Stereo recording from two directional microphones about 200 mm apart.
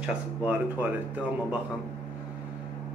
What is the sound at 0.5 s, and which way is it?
Speech, 10° right (ahead or behind).